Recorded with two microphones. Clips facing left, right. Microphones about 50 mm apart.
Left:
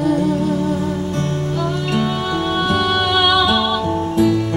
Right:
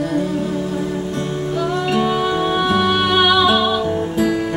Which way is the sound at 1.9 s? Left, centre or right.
Centre.